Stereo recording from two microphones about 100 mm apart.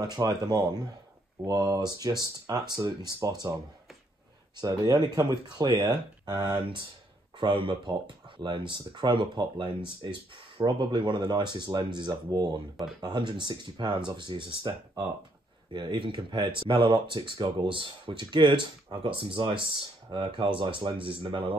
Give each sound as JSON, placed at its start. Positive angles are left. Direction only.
{"t": 0.0, "sound": "speech", "side_deg": -40}
{"t": 4.6, "sound": "speech", "side_deg": -40}
{"t": 7.3, "sound": "speech", "side_deg": -55}